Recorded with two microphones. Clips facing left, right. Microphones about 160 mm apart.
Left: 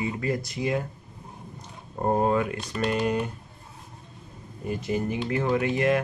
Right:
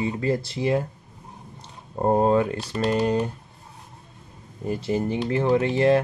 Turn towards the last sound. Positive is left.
turn(degrees=-30)  # may be behind; listen again after turning